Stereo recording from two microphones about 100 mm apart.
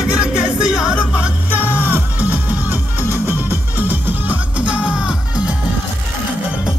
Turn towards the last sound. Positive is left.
turn(degrees=-10)  # may be behind; listen again after turning